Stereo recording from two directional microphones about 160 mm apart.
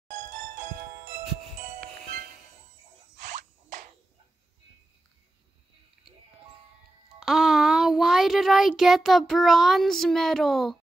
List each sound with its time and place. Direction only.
0.1 s music: 50° right (ahead or behind)
7.2 s child singing: 5° right (ahead or behind)